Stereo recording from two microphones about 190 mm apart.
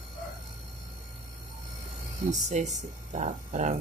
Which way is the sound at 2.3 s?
40° right (ahead or behind).